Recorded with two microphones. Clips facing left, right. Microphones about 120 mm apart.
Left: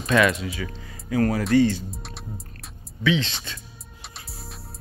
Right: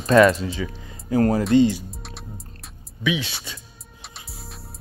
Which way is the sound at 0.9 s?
30° right (ahead or behind).